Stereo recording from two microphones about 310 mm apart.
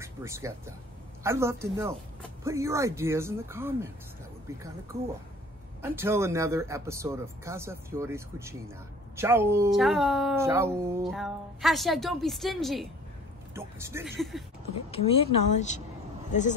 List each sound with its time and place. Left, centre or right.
0.0 s speech: centre
5.8 s speech: centre
14.9 s speech: centre